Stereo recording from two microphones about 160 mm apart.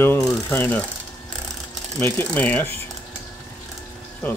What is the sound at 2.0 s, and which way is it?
Speech, 15° left (ahead or behind).